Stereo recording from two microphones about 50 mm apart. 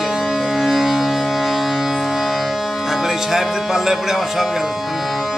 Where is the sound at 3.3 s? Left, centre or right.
Centre.